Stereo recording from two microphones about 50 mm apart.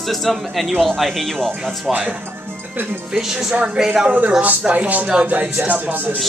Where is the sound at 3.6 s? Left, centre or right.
Centre.